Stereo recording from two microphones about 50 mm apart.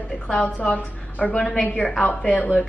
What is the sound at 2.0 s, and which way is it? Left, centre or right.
Speech, left.